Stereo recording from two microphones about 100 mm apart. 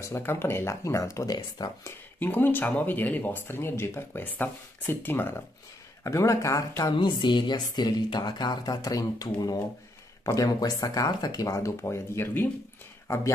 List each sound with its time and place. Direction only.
0.0 s speech: 25° left (ahead or behind); by 1.7 s 40° left (ahead or behind)
1.9 s speech: 20° left (ahead or behind)
6.0 s speech: 30° left (ahead or behind)
6.8 s speech: 45° left (ahead or behind); by 12.4 s 25° left (ahead or behind)